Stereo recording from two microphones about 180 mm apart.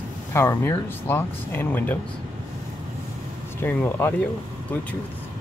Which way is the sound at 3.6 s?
10° left (ahead or behind).